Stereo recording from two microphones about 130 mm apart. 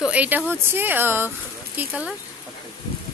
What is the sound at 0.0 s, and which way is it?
Speech, 10° right (ahead or behind).